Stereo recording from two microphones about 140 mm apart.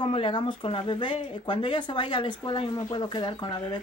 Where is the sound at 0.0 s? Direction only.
35° left (ahead or behind).